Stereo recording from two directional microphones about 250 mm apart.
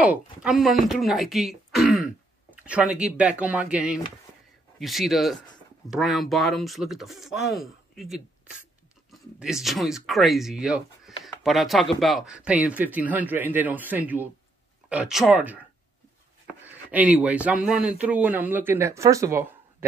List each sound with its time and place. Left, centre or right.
0.0 s a man's voice: centre
16.6 s a man's voice: centre